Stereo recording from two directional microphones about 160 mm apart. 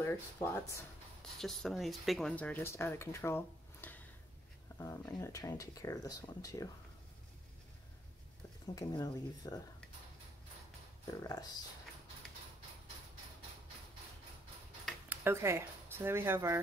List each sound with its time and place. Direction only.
0.0 s speech: 15° left (ahead or behind)
1.4 s speech: centre (ahead or behind); by 6.7 s 20° left (ahead or behind)
8.7 s speech: 20° left (ahead or behind)
11.1 s speech: 25° left (ahead or behind)
15.0 s speech: 15° right (ahead or behind)